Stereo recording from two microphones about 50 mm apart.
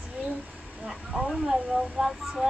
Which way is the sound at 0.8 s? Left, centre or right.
Centre.